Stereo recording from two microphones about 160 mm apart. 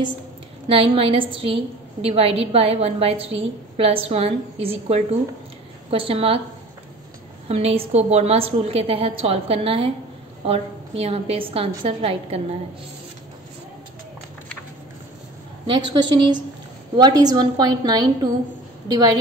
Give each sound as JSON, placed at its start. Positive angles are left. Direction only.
{"t": 0.7, "sound": "a woman's voice", "side_deg": -35}
{"t": 7.4, "sound": "a woman's voice", "side_deg": -40}
{"t": 15.6, "sound": "a woman's voice", "side_deg": -30}